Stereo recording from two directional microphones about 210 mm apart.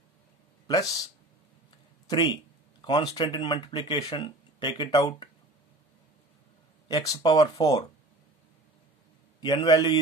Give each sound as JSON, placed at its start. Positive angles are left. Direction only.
{"t": 0.7, "sound": "speech", "side_deg": 15}
{"t": 2.8, "sound": "speech", "side_deg": 20}
{"t": 6.9, "sound": "speech", "side_deg": 15}
{"t": 9.4, "sound": "speech", "side_deg": 20}